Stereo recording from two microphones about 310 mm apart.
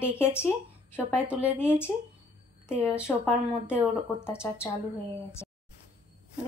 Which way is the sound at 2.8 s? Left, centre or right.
Centre.